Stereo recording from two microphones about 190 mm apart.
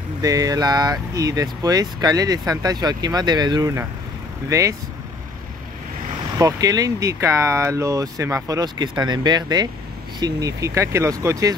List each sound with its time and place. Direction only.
0.2 s speech: 20° right (ahead or behind)
6.3 s speech: 20° right (ahead or behind)